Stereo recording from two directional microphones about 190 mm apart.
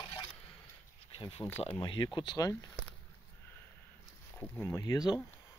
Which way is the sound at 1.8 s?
25° left (ahead or behind).